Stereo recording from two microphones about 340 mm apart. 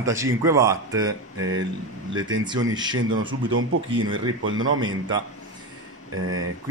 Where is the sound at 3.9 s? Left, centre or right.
Centre.